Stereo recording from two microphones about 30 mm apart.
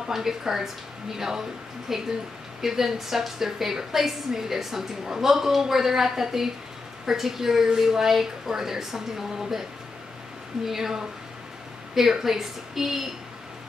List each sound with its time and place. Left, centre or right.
0.1 s a woman's voice: centre
10.7 s a woman's voice: centre